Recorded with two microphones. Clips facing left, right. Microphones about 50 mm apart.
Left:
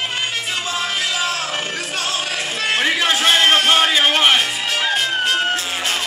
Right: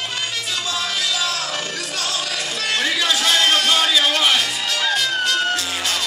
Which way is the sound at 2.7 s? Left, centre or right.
Left.